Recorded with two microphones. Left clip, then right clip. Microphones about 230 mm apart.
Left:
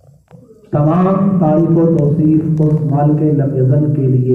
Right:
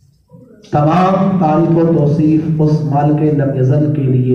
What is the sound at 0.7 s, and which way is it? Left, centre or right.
A man's voice, right.